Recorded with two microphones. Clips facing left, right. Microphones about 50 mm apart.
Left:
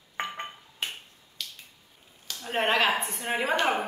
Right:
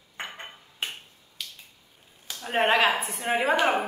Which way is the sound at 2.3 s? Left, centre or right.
Centre.